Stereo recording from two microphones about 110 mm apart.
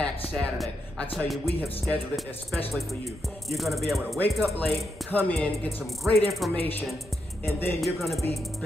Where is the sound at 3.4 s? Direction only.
Centre (ahead or behind).